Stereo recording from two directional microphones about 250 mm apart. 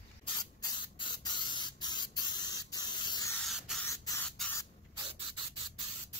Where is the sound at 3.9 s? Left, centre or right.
Centre.